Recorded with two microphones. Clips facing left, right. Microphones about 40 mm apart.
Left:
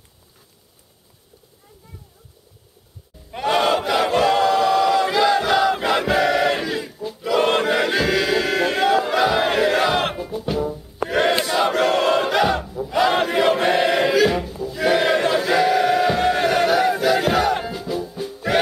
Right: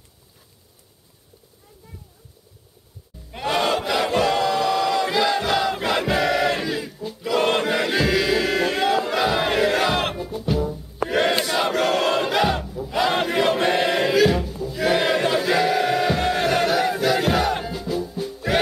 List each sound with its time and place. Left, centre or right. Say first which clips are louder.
3.3 s battle cry: left 3 dB; centre
10.5 s music: even; centre